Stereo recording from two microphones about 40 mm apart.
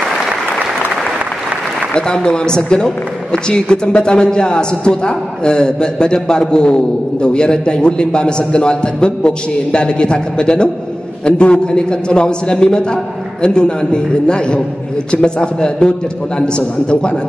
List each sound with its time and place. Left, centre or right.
2.0 s a man's voice: centre